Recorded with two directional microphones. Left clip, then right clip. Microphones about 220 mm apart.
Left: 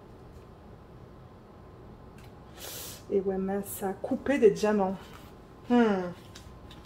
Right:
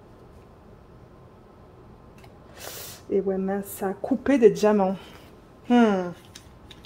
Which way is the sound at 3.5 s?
45° right (ahead or behind).